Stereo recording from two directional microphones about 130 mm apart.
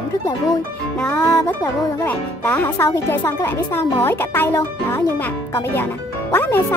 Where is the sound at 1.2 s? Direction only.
30° left (ahead or behind).